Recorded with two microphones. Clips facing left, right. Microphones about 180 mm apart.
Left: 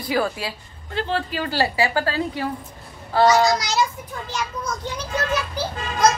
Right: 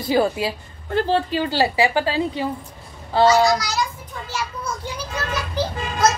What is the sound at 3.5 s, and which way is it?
Speech, 25° left (ahead or behind).